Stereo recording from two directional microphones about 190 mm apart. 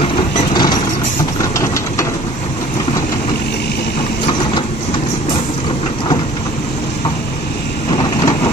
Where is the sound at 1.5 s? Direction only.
15° left (ahead or behind).